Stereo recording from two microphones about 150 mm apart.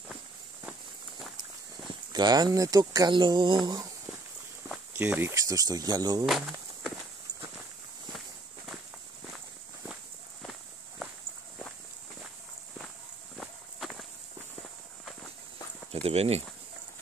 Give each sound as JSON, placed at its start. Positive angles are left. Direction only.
{"t": 2.1, "sound": "speech", "side_deg": -30}
{"t": 4.9, "sound": "speech", "side_deg": -10}
{"t": 6.2, "sound": "speech", "side_deg": 0}
{"t": 13.4, "sound": "walk", "side_deg": 0}
{"t": 15.9, "sound": "speech", "side_deg": -45}